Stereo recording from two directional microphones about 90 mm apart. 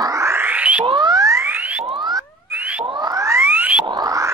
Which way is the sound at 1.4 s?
20° right (ahead or behind).